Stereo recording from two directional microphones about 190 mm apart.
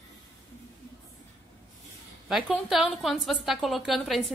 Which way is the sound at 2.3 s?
Centre (ahead or behind).